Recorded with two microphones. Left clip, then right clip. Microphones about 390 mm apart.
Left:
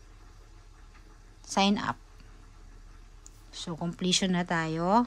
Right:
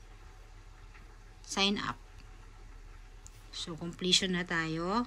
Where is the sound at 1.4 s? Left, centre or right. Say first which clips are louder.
Left 4 dB; left.